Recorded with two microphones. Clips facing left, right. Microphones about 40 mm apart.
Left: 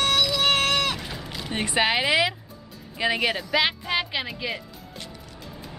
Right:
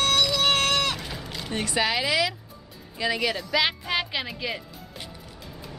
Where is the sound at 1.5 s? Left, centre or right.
Left.